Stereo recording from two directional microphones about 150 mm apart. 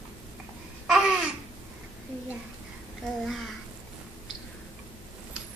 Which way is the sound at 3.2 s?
Centre (ahead or behind).